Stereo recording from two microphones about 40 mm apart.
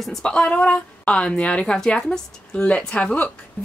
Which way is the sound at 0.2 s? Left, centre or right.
Left.